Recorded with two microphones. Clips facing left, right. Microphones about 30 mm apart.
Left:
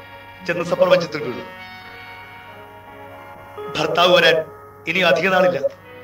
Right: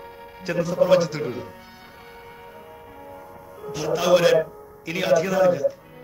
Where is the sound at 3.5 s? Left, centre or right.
Left.